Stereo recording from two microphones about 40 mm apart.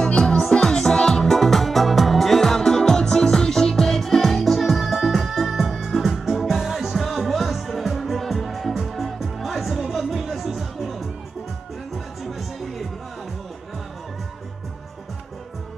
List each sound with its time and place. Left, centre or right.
0.0 s music: left; by 12.4 s centre